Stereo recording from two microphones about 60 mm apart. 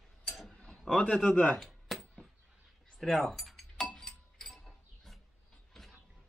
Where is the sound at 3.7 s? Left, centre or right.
Centre.